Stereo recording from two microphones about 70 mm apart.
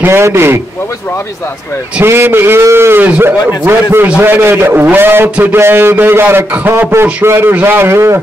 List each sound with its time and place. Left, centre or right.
0.0 s a man's voice: right
2.0 s a man's voice: right